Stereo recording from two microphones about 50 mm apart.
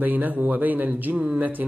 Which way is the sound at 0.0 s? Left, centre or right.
Right.